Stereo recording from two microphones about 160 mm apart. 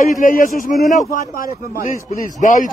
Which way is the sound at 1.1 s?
50° left (ahead or behind).